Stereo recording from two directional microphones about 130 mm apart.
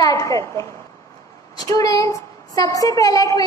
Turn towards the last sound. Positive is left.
turn(degrees=25)  # may be behind; listen again after turning